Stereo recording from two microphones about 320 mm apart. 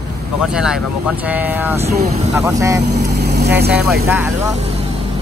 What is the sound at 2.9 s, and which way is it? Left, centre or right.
Vehicle, right.